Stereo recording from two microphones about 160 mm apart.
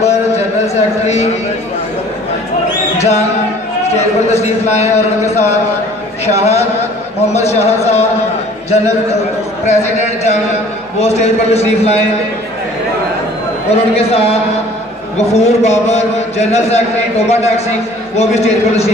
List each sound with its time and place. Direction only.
0.0 s a sound: 45° left (ahead or behind)
3.0 s music: 45° left (ahead or behind)
3.9 s a man's voice: 45° left (ahead or behind)
13.7 s a man's voice: 40° left (ahead or behind)